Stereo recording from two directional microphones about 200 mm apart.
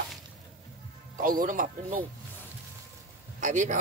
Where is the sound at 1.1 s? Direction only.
45° right (ahead or behind).